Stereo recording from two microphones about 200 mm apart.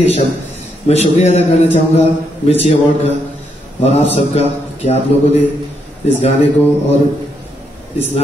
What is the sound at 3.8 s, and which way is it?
Speech, 30° left (ahead or behind).